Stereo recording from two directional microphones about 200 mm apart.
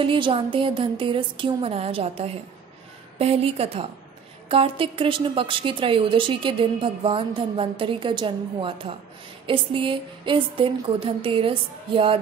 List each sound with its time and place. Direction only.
0.0 s a woman's voice: 25° right (ahead or behind)